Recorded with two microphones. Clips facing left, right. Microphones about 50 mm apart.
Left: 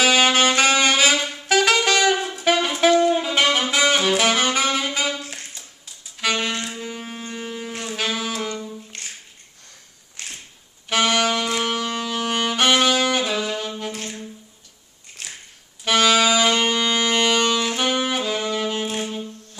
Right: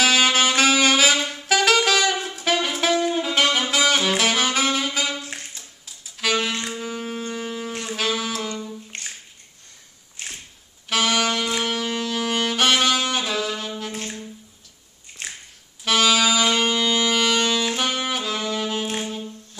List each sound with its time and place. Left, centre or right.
0.0 s saxophone: centre
5.5 s music: centre
6.7 s shofar: centre
7.8 s music: centre
8.9 s bathtub: right
10.9 s saxophone: centre
15.8 s saxophone: centre
18.9 s wind instrument: centre